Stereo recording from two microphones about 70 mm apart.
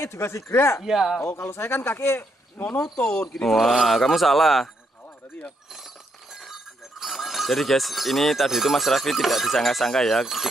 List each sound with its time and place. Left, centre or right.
0.0 s speech: left
0.8 s speech: centre
1.2 s speech: left
2.8 s speech: centre
6.3 s speech: centre